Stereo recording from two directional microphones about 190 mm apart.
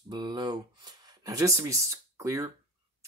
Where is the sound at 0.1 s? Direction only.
20° right (ahead or behind).